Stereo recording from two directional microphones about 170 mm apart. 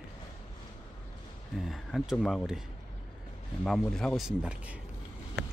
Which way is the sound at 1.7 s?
Centre (ahead or behind).